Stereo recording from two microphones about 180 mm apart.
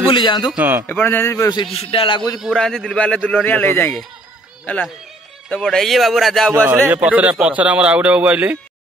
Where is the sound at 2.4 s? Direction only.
5° left (ahead or behind).